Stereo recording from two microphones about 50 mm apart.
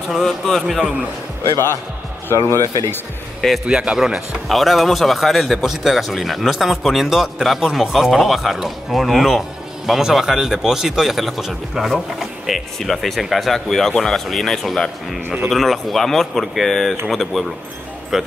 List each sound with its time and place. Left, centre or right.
0.1 s a man's voice: centre
2.4 s speech: left
3.3 s speech: centre
3.6 s speech: centre
4.5 s a man's voice: centre
12.2 s a sound: centre
12.7 s a man's voice: centre
15.2 s speech: right
15.5 s a man's voice: centre